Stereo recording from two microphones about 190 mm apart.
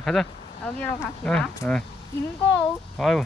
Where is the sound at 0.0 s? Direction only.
Centre (ahead or behind).